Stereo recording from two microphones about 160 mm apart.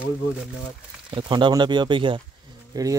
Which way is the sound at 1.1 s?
30° right (ahead or behind).